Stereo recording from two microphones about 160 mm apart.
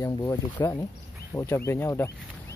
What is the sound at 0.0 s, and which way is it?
Speech, 20° left (ahead or behind).